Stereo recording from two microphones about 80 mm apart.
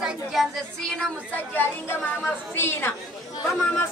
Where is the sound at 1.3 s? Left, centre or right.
Left.